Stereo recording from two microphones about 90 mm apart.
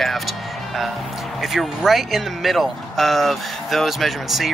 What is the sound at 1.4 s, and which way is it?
Speech, centre (ahead or behind).